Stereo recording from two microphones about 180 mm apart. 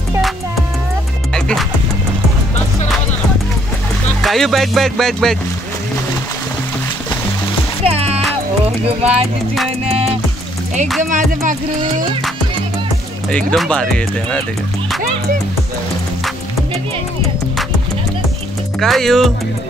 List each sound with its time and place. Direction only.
1.3 s music: centre (ahead or behind)
4.2 s speech: centre (ahead or behind)
7.8 s music: 35° right (ahead or behind)
8.8 s speech: 35° right (ahead or behind)
11.0 s music: 45° right (ahead or behind)
13.3 s speech: 5° left (ahead or behind)
18.8 s speech: centre (ahead or behind)